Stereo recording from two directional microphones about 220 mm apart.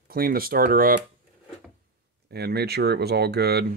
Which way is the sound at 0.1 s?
40° right (ahead or behind).